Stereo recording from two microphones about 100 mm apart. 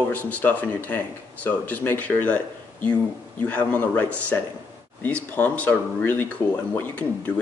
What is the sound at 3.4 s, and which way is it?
Speech, 15° left (ahead or behind).